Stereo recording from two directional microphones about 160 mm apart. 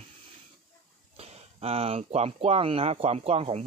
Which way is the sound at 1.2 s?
40° right (ahead or behind).